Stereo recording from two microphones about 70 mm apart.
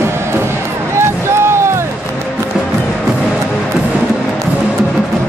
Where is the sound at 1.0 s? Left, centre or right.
Right.